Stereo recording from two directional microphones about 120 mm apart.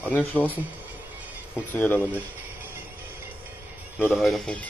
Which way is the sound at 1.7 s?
15° left (ahead or behind).